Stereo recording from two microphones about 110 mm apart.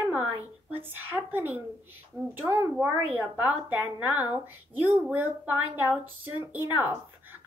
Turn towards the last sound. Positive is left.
turn(degrees=-15)  # may be behind; listen again after turning